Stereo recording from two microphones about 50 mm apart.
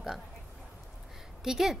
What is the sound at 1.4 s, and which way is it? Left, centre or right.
Speech, centre.